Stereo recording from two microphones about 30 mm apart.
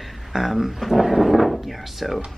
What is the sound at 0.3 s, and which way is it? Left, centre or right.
Speech, centre.